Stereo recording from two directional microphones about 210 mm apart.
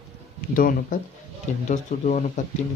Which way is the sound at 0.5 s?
40° left (ahead or behind).